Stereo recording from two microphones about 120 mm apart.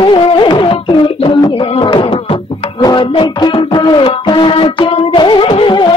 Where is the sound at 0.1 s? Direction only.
40° left (ahead or behind).